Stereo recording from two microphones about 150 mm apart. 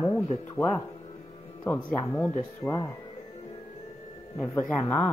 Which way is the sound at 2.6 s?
20° left (ahead or behind).